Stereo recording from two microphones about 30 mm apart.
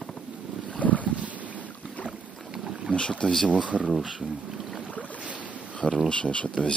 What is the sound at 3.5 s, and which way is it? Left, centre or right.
Speech, right.